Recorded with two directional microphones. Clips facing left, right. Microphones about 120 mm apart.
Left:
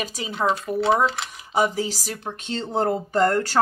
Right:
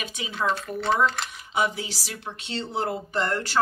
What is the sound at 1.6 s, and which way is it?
Speech, 40° left (ahead or behind).